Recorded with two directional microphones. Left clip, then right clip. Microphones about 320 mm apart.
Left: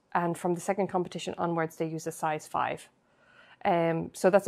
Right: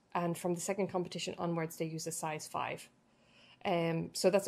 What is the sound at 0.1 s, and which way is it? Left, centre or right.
A woman's voice, centre.